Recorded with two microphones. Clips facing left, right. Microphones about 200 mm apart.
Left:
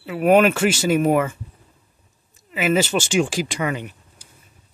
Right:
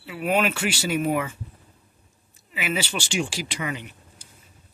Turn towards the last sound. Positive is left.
turn(degrees=50)  # may be behind; listen again after turning